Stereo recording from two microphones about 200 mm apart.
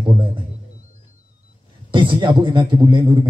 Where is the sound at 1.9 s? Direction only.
25° right (ahead or behind).